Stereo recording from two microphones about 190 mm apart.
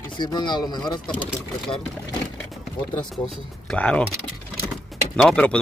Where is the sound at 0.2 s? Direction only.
25° left (ahead or behind).